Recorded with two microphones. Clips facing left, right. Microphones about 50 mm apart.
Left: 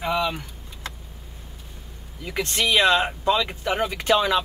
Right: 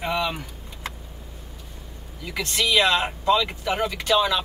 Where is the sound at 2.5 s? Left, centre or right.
Left.